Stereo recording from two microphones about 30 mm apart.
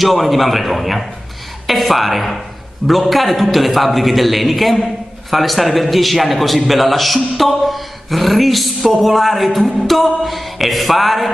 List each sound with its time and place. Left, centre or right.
0.0 s speech: centre